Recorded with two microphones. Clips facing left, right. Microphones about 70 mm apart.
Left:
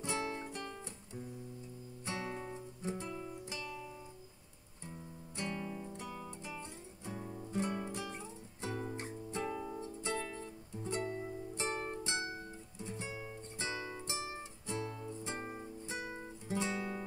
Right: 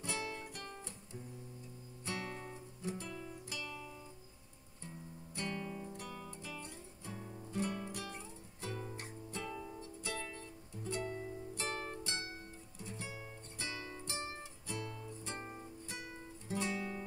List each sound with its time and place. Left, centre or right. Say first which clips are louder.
0.0 s music: left 4 dB; left
2.0 s music: left 2 dB; left
5.4 s music: left 1 dB; centre